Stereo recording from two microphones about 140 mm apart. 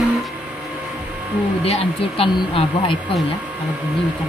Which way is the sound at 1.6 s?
45° left (ahead or behind).